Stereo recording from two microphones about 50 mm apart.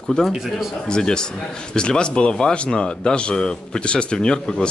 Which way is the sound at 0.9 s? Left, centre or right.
Centre.